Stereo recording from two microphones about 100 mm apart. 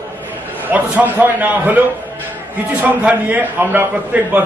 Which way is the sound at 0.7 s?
15° right (ahead or behind).